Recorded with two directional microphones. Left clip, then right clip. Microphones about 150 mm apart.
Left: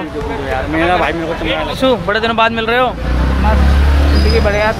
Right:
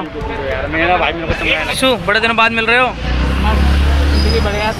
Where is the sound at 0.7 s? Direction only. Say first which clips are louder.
Even; 90° left.